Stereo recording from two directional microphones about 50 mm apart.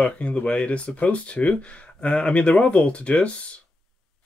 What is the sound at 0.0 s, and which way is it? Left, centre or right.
Speech, left.